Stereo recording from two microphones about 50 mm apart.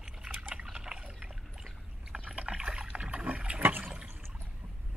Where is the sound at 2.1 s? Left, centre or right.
Right.